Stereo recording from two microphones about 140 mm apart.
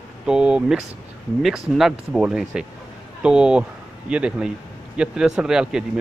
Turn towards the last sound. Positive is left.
turn(degrees=-5)  # may be behind; listen again after turning